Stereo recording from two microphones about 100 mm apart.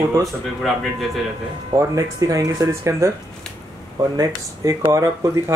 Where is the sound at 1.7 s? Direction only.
30° right (ahead or behind).